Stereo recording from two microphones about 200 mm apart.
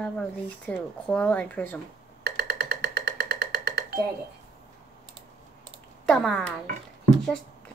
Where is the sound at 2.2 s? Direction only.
55° right (ahead or behind).